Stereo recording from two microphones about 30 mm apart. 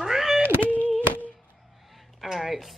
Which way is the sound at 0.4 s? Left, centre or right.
Left.